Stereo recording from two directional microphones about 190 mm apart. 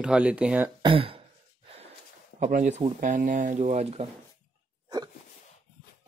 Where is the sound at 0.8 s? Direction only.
25° right (ahead or behind).